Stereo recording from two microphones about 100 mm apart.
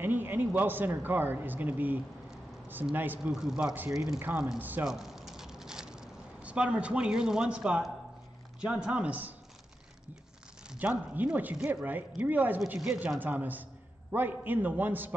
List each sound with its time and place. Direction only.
0.0 s speech: 20° right (ahead or behind)
3.3 s speech: 5° right (ahead or behind)
4.2 s speech: 15° right (ahead or behind)
4.8 s squish: 5° right (ahead or behind)
8.5 s speech: 10° right (ahead or behind)
10.7 s speech: 15° right (ahead or behind)
13.2 s speech: 20° right (ahead or behind)